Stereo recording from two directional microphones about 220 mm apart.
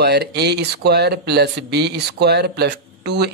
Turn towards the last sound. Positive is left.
turn(degrees=-50)  # may be behind; listen again after turning